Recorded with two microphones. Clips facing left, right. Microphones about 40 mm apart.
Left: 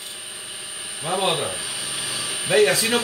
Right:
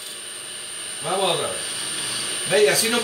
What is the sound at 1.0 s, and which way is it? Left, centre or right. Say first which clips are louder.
Speech: right 1 dB; centre.